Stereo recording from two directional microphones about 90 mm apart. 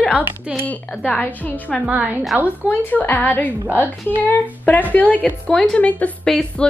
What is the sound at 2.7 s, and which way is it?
A woman's voice, 20° left (ahead or behind).